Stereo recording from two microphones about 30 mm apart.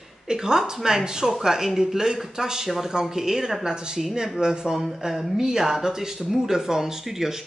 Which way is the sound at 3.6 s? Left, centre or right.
Right.